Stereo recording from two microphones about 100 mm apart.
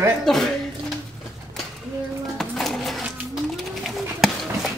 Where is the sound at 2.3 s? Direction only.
5° left (ahead or behind).